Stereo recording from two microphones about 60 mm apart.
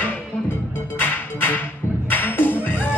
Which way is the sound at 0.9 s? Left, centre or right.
Left.